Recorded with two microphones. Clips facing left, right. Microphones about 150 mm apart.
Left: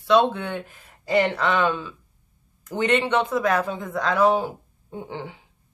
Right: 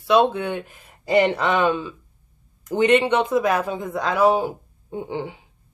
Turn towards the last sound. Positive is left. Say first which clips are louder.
# right 5 dB
turn(degrees=-15)  # may be behind; listen again after turning